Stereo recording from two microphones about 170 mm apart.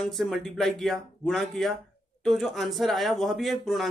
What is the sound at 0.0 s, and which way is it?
Speech, centre (ahead or behind).